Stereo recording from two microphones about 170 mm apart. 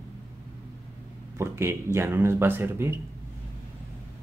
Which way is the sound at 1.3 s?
15° right (ahead or behind).